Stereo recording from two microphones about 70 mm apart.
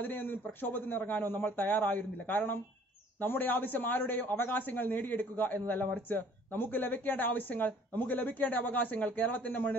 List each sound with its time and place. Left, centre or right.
0.0 s a man's voice: left